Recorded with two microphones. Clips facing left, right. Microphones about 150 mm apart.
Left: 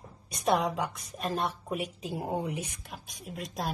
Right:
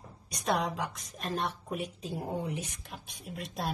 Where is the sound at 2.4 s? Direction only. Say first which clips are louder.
Left 2 dB; 60° left (ahead or behind).